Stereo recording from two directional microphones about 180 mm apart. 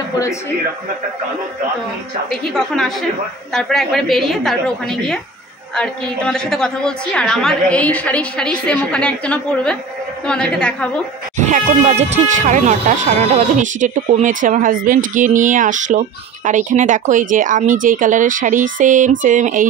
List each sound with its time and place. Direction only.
2.2 s a woman's voice: centre (ahead or behind)
11.3 s speech: 40° right (ahead or behind)